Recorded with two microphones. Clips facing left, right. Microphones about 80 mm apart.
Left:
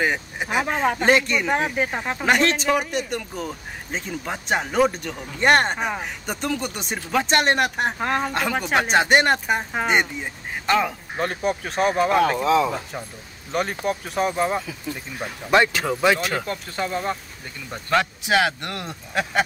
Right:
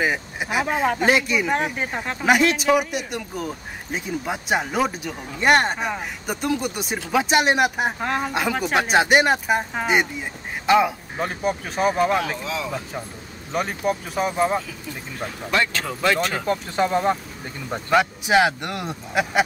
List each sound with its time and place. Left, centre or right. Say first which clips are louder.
0.0 s speech: even; centre
2.2 s speech: right 2 dB; centre
10.7 s speech: right 4 dB; centre
12.2 s speech: left 8 dB; left
13.5 s speech: right 1 dB; centre
15.5 s speech: left 5 dB; centre
16.4 s speech: right 6 dB; right